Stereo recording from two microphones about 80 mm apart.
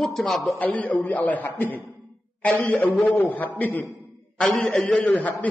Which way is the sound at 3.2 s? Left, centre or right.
Left.